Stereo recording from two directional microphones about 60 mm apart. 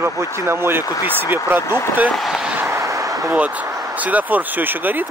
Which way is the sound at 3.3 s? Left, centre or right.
Right.